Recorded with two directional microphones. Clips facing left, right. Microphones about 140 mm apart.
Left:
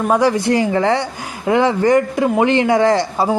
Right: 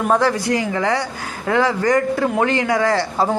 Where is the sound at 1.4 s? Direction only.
20° left (ahead or behind).